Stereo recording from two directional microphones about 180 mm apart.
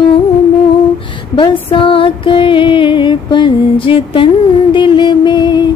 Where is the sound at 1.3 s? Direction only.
25° left (ahead or behind).